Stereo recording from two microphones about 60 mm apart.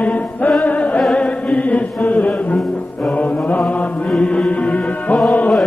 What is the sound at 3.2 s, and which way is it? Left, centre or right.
Mantra, left.